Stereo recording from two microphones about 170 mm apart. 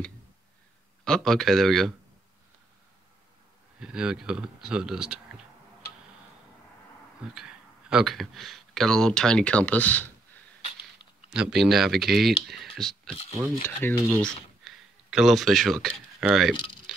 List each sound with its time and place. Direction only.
1.0 s speech: centre (ahead or behind)
3.8 s speech: 5° right (ahead or behind)
7.3 s speech: 5° right (ahead or behind)
11.2 s speech: 5° right (ahead or behind)
14.2 s speech: centre (ahead or behind)